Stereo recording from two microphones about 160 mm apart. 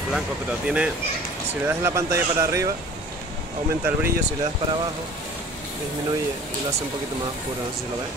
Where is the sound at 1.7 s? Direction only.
15° right (ahead or behind).